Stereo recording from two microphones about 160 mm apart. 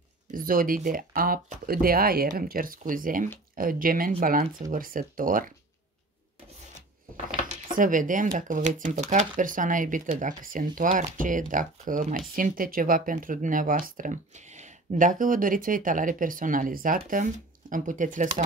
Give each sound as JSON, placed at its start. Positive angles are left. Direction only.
{"t": 0.3, "sound": "speech", "side_deg": -60}
{"t": 7.2, "sound": "a sound", "side_deg": -40}
{"t": 7.7, "sound": "speech", "side_deg": -55}